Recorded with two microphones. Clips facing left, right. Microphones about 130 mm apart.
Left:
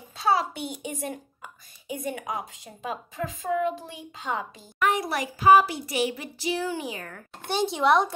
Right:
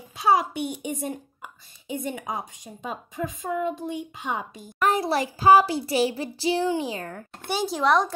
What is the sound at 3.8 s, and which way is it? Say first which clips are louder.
Speech: right 7 dB; 15° right (ahead or behind).